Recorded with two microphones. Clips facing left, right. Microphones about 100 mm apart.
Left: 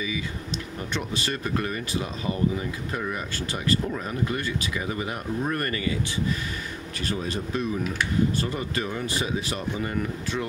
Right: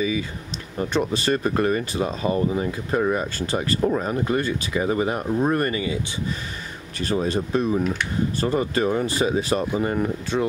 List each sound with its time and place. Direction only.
0.7 s speech: 35° right (ahead or behind); by 5.9 s 20° right (ahead or behind)
7.0 s speech: 35° right (ahead or behind)